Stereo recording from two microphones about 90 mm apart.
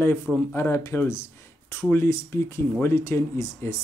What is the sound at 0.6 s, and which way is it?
Speech, 30° left (ahead or behind).